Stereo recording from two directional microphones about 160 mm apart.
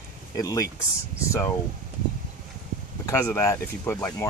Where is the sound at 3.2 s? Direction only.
15° left (ahead or behind).